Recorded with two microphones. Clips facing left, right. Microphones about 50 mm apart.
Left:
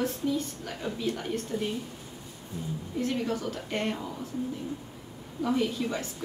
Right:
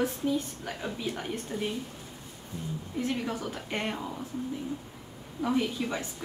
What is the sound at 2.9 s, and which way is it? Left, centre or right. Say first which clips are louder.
A woman's voice: left 2 dB; centre.